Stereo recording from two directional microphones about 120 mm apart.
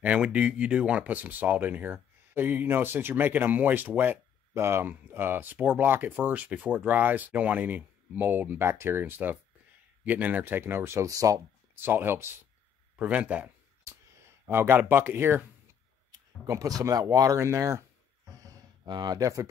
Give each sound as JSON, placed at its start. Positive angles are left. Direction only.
{"t": 0.0, "sound": "speech", "side_deg": -10}
{"t": 14.5, "sound": "speech", "side_deg": -15}
{"t": 16.1, "sound": "speech", "side_deg": -30}
{"t": 18.4, "sound": "a sound", "side_deg": -35}